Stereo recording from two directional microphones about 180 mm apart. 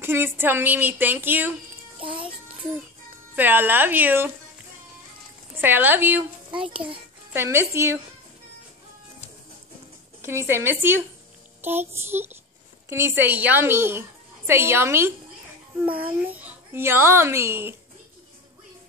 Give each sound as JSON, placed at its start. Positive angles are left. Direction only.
{"t": 0.0, "sound": "a woman's voice", "side_deg": -10}
{"t": 2.0, "sound": "music", "side_deg": -30}
{"t": 3.3, "sound": "a woman's voice", "side_deg": -10}
{"t": 5.6, "sound": "a woman's voice", "side_deg": -10}
{"t": 7.3, "sound": "a woman's voice", "side_deg": -15}
{"t": 10.2, "sound": "a woman's voice", "side_deg": -15}